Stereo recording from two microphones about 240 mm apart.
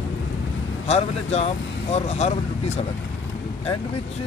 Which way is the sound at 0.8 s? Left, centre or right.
Left.